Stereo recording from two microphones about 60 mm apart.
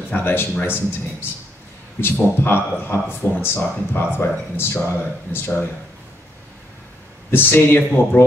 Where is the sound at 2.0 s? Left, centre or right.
Left.